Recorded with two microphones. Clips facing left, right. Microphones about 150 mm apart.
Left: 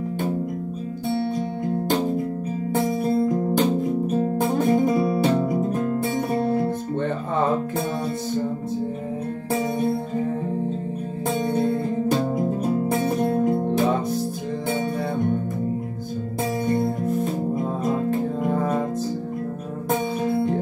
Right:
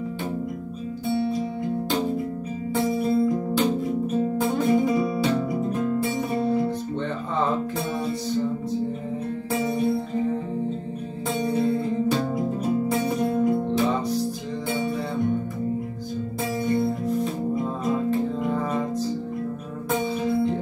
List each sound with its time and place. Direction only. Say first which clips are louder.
3.0 s music: left 1 dB; 45° left (ahead or behind)
11.4 s music: right 1 dB; 50° left (ahead or behind)
16.6 s music: even; 45° left (ahead or behind)